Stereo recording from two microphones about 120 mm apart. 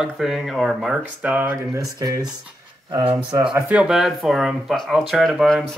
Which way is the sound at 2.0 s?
30° right (ahead or behind).